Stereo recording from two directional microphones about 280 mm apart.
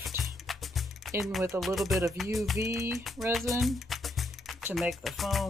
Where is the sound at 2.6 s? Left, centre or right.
Centre.